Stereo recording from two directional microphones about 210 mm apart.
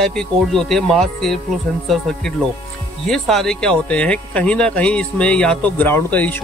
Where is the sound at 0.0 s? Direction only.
Centre (ahead or behind).